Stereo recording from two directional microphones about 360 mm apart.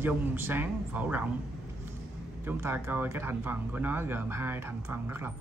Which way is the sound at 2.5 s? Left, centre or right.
Centre.